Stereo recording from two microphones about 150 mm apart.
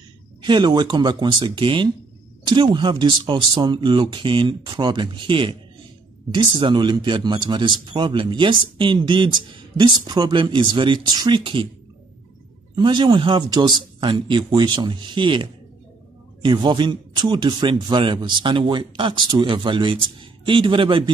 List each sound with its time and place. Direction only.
0.4 s a man's voice: 30° right (ahead or behind)
12.7 s a man's voice: 30° right (ahead or behind)
16.4 s a man's voice: 30° right (ahead or behind)